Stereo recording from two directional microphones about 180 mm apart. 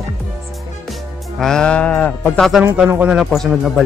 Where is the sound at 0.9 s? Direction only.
Centre (ahead or behind).